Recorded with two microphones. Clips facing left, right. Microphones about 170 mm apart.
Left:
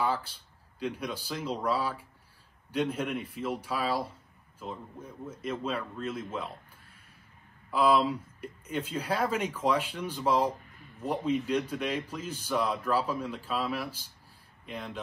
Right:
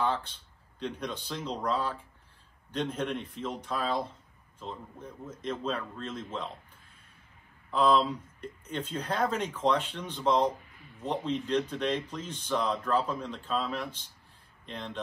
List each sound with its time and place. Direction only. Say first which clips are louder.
0.0 s speech: even; 10° left (ahead or behind)
7.7 s speech: even; 10° left (ahead or behind)